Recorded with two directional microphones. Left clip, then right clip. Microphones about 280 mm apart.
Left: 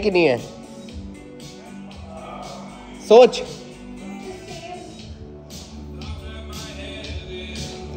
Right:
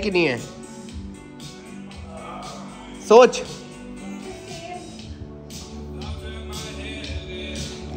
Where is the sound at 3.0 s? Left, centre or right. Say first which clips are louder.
Left 1 dB; right.